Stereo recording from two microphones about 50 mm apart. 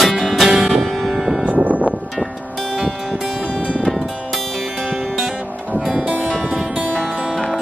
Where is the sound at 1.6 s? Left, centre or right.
Right.